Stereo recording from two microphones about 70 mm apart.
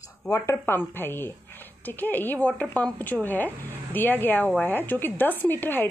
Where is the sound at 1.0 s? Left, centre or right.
Left.